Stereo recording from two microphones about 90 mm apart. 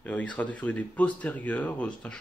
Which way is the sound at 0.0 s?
15° left (ahead or behind).